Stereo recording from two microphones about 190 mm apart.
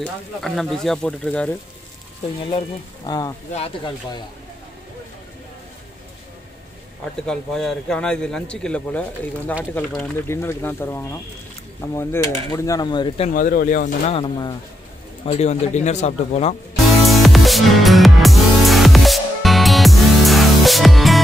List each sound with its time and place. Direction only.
0.0 s speech: centre (ahead or behind)
2.5 s speech: 20° left (ahead or behind)
7.2 s speech: 5° left (ahead or behind); by 13.3 s 25° left (ahead or behind)
13.3 s speech: 45° left (ahead or behind)
14.1 s speech: 25° left (ahead or behind)
17.0 s music: centre (ahead or behind)